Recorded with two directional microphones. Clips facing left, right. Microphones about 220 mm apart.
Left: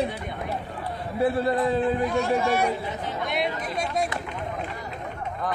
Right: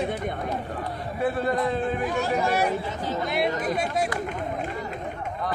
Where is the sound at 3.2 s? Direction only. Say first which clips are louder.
Right 1 dB; centre (ahead or behind).